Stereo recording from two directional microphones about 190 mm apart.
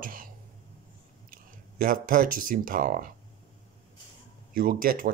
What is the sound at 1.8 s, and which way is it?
Speech, 45° right (ahead or behind).